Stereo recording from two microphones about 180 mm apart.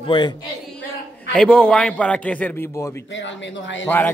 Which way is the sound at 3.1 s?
90° left.